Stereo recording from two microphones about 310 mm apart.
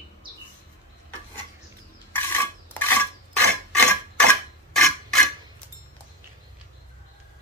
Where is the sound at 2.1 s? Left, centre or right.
Centre.